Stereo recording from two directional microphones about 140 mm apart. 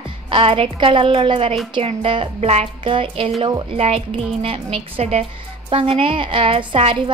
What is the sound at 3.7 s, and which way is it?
A child's voice, 45° right (ahead or behind).